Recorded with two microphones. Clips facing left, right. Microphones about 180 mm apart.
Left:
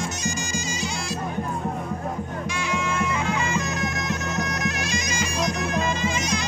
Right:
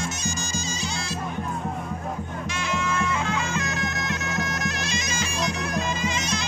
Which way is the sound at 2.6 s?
10° left (ahead or behind).